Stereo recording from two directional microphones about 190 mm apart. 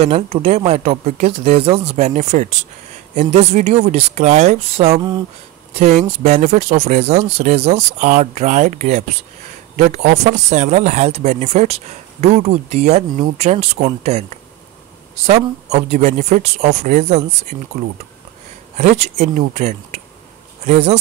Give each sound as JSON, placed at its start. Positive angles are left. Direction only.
{"t": 0.0, "sound": "speech", "side_deg": -30}
{"t": 15.2, "sound": "speech", "side_deg": -35}
{"t": 18.8, "sound": "speech", "side_deg": -40}